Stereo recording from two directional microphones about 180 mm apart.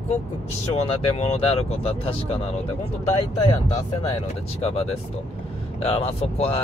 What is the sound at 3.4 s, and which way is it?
Speech, 25° left (ahead or behind).